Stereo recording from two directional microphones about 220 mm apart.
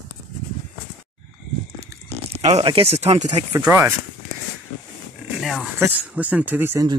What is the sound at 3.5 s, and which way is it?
Speech, 10° right (ahead or behind).